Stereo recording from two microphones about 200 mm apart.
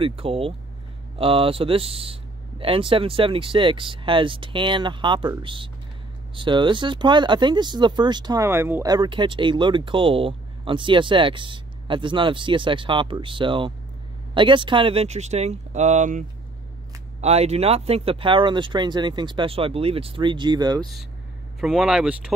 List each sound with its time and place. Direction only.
0.0 s speech: 30° right (ahead or behind)
21.5 s speech: centre (ahead or behind)